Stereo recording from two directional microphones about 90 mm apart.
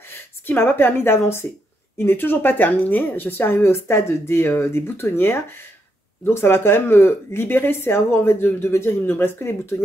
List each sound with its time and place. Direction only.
0.1 s a woman's voice: 25° left (ahead or behind)